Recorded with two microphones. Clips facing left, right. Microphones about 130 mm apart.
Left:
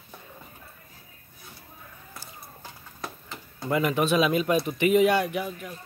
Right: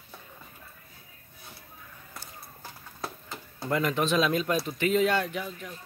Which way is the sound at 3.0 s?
5° right (ahead or behind).